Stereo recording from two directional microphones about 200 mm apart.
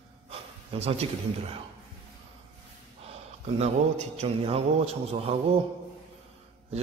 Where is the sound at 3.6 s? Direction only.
35° right (ahead or behind).